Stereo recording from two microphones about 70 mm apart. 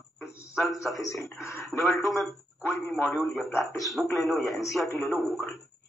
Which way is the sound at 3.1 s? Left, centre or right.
Centre.